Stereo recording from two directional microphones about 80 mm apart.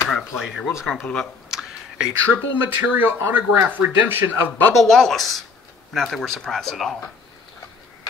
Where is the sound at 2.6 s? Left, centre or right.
Right.